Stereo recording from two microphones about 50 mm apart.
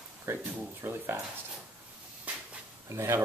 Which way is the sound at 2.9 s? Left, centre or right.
Right.